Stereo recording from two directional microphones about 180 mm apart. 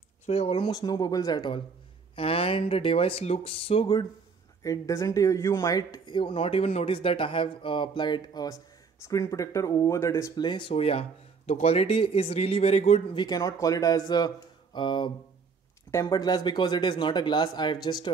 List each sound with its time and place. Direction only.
0.3 s speech: 35° left (ahead or behind)
13.2 s speech: 20° left (ahead or behind)